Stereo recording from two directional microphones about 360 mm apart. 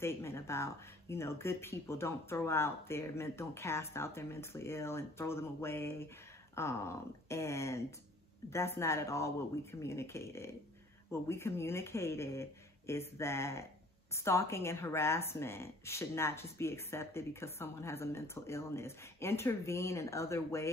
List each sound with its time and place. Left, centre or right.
0.0 s a woman's voice: centre